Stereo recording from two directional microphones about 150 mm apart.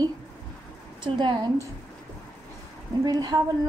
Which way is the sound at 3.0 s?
25° right (ahead or behind).